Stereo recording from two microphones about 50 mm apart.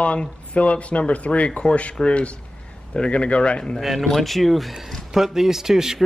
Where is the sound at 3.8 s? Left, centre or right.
Centre.